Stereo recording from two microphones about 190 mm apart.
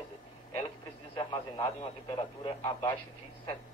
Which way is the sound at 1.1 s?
25° left (ahead or behind).